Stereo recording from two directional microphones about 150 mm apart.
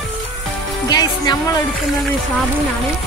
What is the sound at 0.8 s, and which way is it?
Music, 25° left (ahead or behind).